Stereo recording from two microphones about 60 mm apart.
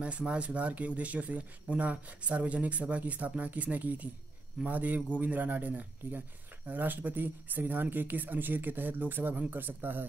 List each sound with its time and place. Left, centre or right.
0.2 s speech: centre